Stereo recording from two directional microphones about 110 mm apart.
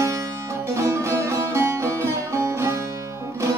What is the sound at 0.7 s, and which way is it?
Music, 25° right (ahead or behind).